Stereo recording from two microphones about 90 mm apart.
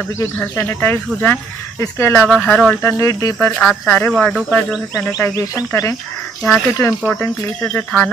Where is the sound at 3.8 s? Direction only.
20° left (ahead or behind).